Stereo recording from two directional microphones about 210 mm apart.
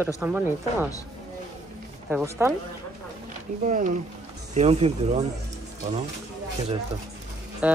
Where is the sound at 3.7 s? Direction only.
35° right (ahead or behind).